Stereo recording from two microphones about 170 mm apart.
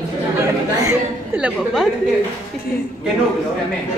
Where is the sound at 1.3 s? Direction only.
5° right (ahead or behind).